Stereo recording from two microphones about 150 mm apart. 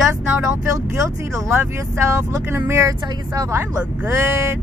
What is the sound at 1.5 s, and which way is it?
Speech, 15° right (ahead or behind).